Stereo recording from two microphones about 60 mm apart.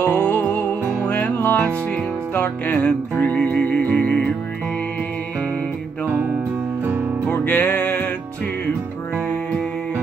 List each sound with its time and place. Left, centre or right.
0.0 s music: left
7.4 s music: left